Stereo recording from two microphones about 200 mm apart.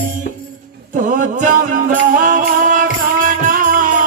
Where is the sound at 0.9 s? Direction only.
40° right (ahead or behind).